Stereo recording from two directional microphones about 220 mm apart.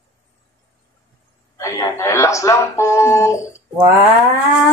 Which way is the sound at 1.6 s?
15° left (ahead or behind).